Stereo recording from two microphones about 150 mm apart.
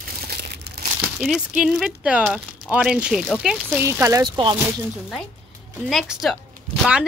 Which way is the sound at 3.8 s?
20° right (ahead or behind).